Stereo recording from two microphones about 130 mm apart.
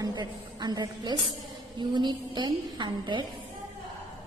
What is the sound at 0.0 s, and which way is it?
A woman's voice, 30° right (ahead or behind).